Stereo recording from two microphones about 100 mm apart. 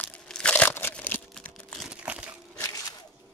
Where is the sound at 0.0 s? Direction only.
15° left (ahead or behind).